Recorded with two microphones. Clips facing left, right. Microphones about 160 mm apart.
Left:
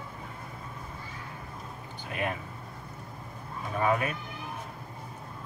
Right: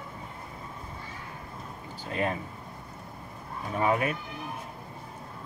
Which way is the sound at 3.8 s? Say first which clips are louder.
Right 1 dB; 25° right (ahead or behind).